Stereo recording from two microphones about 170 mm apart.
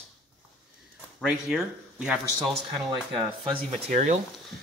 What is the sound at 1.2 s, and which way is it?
Speech, 5° right (ahead or behind).